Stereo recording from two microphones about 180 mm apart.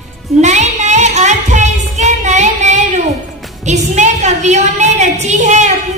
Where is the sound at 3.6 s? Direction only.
40° right (ahead or behind).